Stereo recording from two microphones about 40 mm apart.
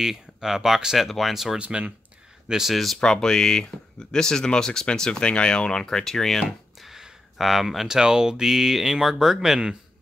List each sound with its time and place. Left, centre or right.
0.0 s speech: centre
1.0 s speech: centre
1.6 s speech: right
2.4 s speech: centre
2.7 s speech: centre
3.0 s speech: centre
6.8 s a sound: centre
8.0 s speech: centre